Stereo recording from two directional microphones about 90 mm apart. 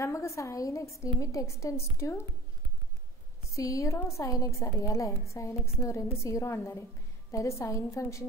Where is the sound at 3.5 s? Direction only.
35° left (ahead or behind).